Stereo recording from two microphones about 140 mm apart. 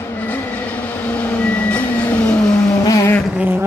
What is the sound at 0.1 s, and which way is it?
Vehicle, 10° left (ahead or behind).